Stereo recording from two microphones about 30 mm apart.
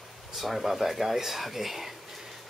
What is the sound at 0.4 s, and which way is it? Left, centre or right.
Speech, centre.